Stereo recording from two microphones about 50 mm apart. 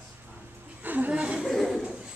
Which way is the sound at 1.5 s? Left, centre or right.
Centre.